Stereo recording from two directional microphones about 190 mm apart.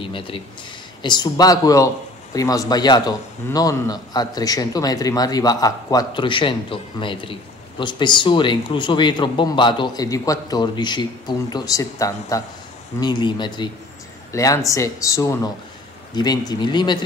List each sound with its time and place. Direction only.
0.0 s a man's voice: 25° left (ahead or behind)